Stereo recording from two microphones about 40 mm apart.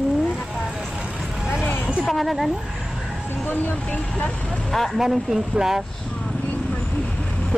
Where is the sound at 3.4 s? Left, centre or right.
Left.